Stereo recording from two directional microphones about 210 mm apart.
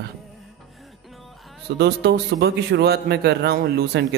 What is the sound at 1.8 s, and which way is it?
A man's voice, 50° right (ahead or behind).